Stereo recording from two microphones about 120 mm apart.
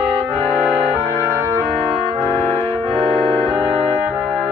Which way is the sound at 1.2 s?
20° right (ahead or behind).